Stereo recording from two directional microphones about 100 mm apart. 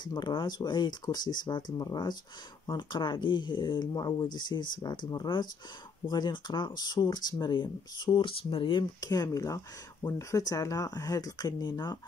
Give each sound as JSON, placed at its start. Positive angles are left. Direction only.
{"t": 0.0, "sound": "speech", "side_deg": 45}
{"t": 9.0, "sound": "speech", "side_deg": 40}